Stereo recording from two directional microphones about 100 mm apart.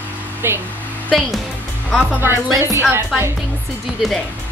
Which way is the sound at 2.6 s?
25° right (ahead or behind).